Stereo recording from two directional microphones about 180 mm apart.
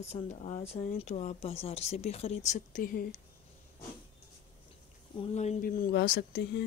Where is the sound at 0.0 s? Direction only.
40° left (ahead or behind).